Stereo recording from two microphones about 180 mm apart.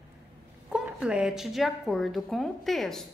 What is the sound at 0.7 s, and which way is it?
A woman's voice, 5° right (ahead or behind).